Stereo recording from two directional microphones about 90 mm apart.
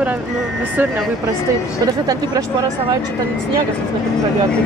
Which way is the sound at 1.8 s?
50° right (ahead or behind).